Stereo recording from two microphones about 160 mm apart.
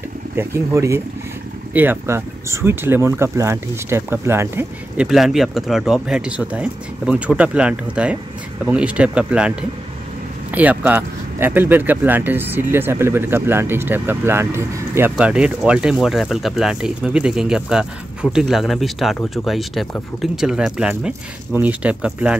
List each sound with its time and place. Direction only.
0.4 s speech: 15° right (ahead or behind)
5.0 s speech: centre (ahead or behind)